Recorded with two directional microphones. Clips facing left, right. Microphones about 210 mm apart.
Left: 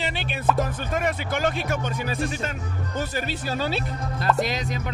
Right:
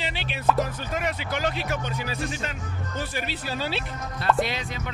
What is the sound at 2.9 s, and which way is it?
Speech, 50° left (ahead or behind).